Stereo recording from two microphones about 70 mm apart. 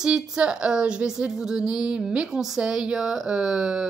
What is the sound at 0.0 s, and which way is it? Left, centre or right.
Speech, centre.